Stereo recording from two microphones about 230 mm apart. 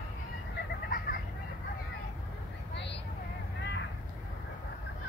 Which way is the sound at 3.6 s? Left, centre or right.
Left.